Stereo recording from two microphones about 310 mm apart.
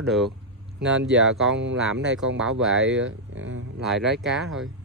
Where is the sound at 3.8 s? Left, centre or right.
Centre.